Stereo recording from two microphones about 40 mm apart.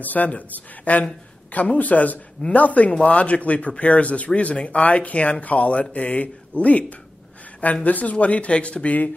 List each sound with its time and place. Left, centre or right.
0.0 s speech: left